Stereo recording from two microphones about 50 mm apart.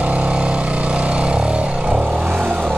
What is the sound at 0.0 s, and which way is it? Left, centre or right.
Vehicle, right.